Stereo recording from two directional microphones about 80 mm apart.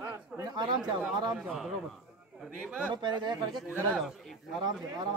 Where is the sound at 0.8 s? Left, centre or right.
Centre.